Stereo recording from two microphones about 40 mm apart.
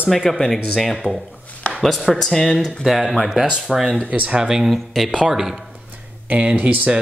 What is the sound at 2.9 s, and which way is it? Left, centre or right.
Speech, centre.